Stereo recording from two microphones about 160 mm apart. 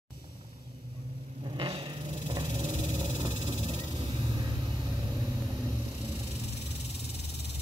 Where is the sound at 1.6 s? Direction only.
30° right (ahead or behind).